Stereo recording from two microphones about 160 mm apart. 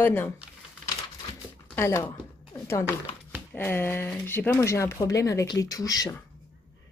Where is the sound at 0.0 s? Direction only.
15° left (ahead or behind).